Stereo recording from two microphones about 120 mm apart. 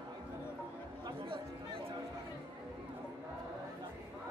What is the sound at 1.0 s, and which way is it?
Chatter, 45° right (ahead or behind).